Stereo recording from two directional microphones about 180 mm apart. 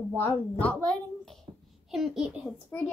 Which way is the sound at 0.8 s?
5° left (ahead or behind).